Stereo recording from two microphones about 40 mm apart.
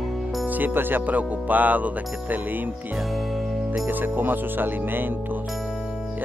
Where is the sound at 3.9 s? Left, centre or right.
Right.